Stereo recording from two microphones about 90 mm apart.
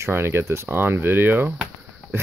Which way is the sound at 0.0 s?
30° right (ahead or behind).